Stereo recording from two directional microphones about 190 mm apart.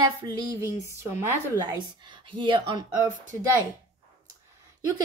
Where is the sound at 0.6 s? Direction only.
15° right (ahead or behind).